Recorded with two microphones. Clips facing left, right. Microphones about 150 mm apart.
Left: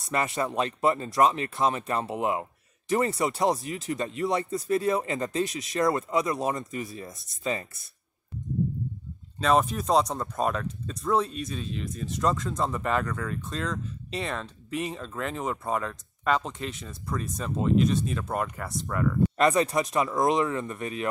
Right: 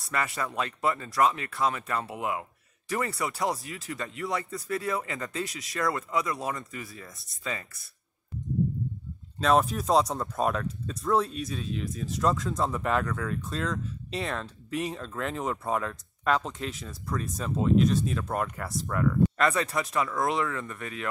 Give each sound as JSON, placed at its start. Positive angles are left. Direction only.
{"t": 0.0, "sound": "speech", "side_deg": 20}
{"t": 9.4, "sound": "speech", "side_deg": 0}
{"t": 19.3, "sound": "speech", "side_deg": 20}